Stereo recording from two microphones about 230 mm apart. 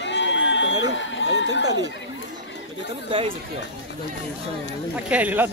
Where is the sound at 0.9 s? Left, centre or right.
Left.